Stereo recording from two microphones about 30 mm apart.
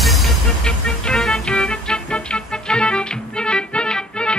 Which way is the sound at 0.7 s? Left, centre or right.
Left.